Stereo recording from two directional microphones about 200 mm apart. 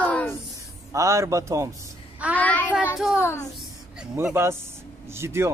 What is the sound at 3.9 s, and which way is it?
A man's voice, 10° right (ahead or behind).